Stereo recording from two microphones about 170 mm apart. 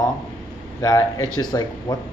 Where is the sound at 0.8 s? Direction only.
20° left (ahead or behind).